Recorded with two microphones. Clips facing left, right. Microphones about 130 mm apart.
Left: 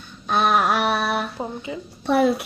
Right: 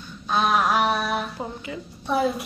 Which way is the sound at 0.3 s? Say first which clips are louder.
Left 2 dB; 60° left (ahead or behind).